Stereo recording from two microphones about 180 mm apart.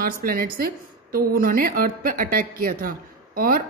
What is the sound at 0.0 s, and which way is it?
A woman's voice, 55° right (ahead or behind).